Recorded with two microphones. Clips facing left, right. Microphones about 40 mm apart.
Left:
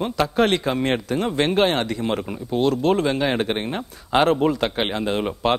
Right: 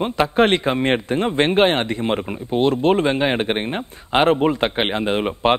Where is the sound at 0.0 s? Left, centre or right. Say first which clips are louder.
Right 3 dB; right.